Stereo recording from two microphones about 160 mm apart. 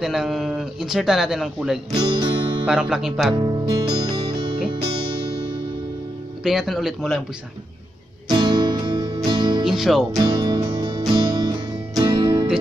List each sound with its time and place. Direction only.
0.0 s speech: centre (ahead or behind)
2.0 s music: 25° right (ahead or behind)
2.6 s speech: 5° right (ahead or behind)
3.3 s music: 25° right (ahead or behind)
6.4 s speech: centre (ahead or behind)
8.3 s music: 30° right (ahead or behind)
9.7 s speech: centre (ahead or behind)
10.1 s music: 25° right (ahead or behind)